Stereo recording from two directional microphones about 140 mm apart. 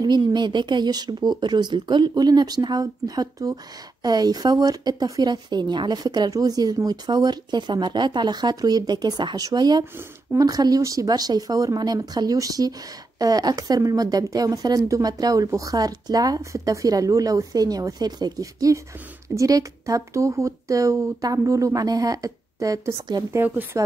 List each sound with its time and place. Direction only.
0.0 s speech: 30° right (ahead or behind)
23.4 s speech: 10° right (ahead or behind)